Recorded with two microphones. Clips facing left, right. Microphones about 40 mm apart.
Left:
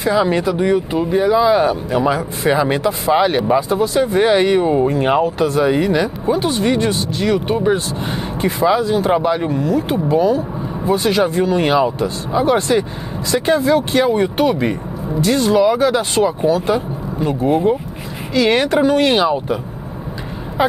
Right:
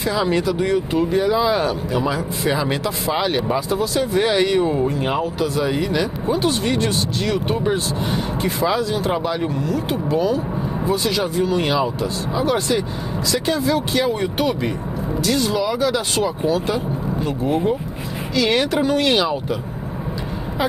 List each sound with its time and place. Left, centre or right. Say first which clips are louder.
0.0 s speech: left 4 dB; left
0.9 s speech: left 2 dB; centre
1.9 s speech: left 4 dB; left
3.1 s speech: left 6 dB; centre
3.6 s speech: left 4 dB; left
4.6 s speech: left 4 dB; centre
4.8 s speech: left 6 dB; left; by 7.7 s centre
8.8 s speech: left 6 dB; left